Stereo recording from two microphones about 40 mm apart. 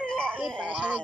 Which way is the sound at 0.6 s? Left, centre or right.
Right.